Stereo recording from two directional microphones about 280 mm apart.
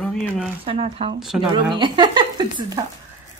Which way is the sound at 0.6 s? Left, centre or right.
Centre.